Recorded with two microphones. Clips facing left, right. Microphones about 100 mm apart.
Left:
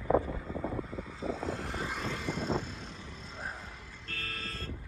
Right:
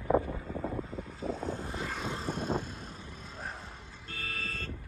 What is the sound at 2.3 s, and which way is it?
Vehicle, 50° right (ahead or behind).